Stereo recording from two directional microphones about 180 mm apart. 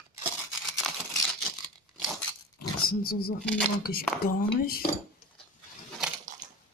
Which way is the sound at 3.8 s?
55° left (ahead or behind).